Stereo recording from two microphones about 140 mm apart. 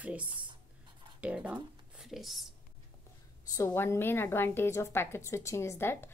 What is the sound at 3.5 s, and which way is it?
A woman's voice, 20° left (ahead or behind).